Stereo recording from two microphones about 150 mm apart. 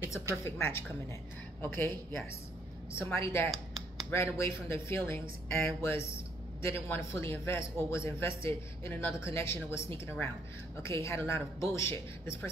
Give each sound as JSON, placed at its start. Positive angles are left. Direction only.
{"t": 0.4, "sound": "a man's voice", "side_deg": 15}
{"t": 3.4, "sound": "speech", "side_deg": 0}
{"t": 4.1, "sound": "a man's voice", "side_deg": 20}